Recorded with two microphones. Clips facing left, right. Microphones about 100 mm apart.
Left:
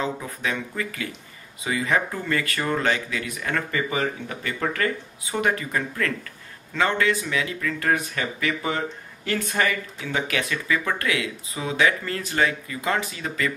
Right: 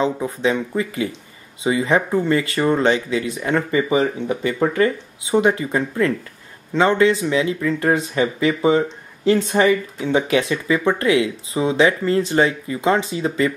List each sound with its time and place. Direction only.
0.0 s speech: 25° right (ahead or behind)